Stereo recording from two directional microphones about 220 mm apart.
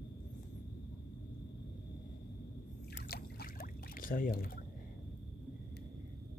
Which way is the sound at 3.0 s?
45° left (ahead or behind).